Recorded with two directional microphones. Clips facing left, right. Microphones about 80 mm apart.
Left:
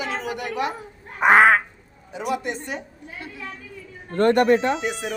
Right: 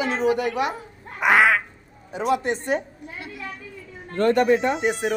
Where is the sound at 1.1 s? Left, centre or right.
Left.